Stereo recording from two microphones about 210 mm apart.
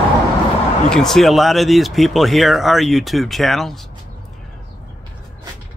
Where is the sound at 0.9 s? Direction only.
Centre (ahead or behind).